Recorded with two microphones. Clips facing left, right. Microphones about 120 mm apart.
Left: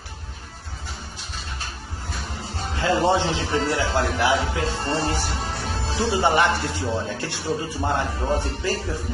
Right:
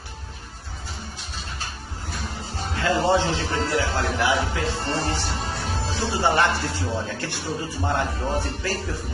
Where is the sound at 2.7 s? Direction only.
20° left (ahead or behind).